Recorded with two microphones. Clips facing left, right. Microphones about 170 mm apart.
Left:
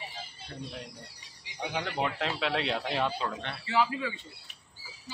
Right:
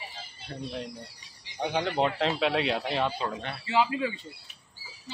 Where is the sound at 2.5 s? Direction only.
10° right (ahead or behind).